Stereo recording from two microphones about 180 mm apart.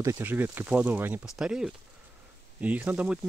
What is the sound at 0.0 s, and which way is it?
Speech, 15° right (ahead or behind).